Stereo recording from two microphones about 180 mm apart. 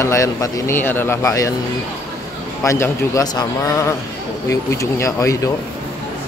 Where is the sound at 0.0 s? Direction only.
15° left (ahead or behind).